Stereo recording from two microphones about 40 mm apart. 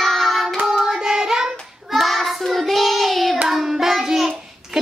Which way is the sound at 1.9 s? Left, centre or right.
Centre.